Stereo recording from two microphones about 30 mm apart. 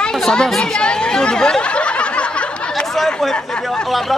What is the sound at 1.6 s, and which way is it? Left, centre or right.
Snicker, left.